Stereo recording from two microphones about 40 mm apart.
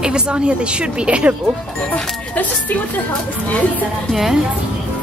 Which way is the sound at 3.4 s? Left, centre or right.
Left.